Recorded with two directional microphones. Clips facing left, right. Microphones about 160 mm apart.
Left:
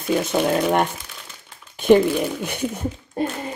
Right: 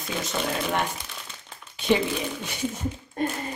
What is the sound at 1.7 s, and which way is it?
Speech, 50° left (ahead or behind).